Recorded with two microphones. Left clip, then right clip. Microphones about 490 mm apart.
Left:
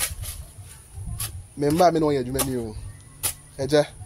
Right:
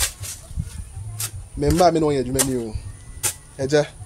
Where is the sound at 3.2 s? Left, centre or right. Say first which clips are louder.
Right 3 dB; left.